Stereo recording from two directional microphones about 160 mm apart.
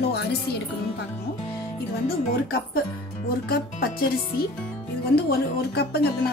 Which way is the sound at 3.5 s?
70° left (ahead or behind).